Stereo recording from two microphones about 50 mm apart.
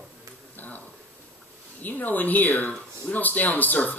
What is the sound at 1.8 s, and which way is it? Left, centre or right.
A woman's voice, left.